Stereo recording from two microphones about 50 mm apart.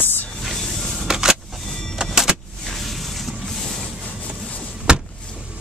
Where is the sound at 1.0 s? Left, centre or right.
Centre.